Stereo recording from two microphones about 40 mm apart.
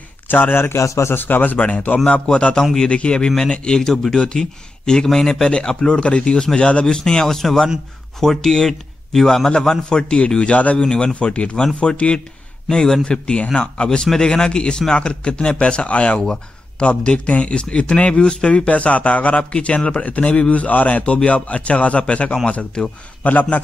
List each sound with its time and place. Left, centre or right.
0.3 s a man's voice: left
1.2 s speech: left
1.6 s speech: left
2.0 s a man's voice: left; by 9.5 s centre
9.5 s a man's voice: centre
10.8 s a man's voice: left
12.6 s speech: centre
13.0 s a man's voice: left
16.2 s speech: centre
16.8 s speech: left
19.5 s speech: left
23.2 s speech: left